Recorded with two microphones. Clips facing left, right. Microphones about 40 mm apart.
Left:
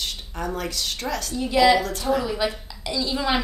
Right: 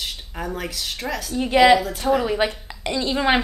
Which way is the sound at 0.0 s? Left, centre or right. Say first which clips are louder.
Even; centre.